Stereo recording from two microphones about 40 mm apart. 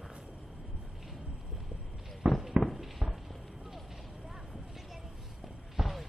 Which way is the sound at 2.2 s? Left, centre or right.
Right.